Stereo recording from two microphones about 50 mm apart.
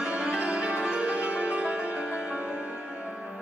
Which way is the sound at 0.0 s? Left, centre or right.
Centre.